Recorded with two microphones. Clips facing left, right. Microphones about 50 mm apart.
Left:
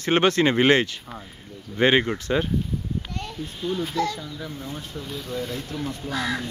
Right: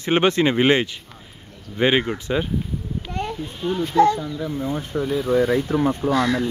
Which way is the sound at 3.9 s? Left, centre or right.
Right.